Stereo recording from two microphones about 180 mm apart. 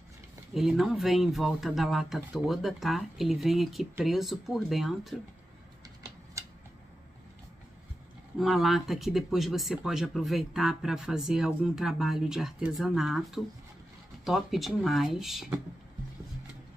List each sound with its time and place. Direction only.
0.6 s speech: centre (ahead or behind)
6.4 s tick-tock: 15° right (ahead or behind)
8.4 s speech: centre (ahead or behind)